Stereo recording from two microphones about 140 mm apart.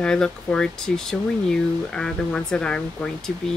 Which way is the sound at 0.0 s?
5° left (ahead or behind).